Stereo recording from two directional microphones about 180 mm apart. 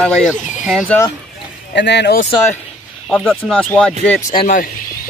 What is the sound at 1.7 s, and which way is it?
Speech, 70° left (ahead or behind).